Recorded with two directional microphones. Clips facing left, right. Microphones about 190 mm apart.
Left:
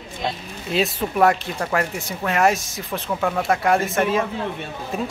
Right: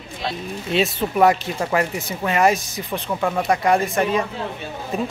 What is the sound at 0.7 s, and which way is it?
Speech, centre (ahead or behind).